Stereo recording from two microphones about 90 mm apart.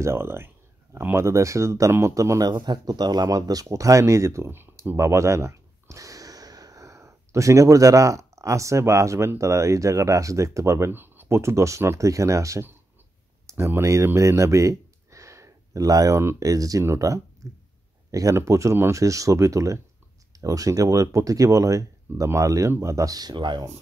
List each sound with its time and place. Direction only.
0.0 s speech: 30° right (ahead or behind)
2.5 s speech: 50° right (ahead or behind)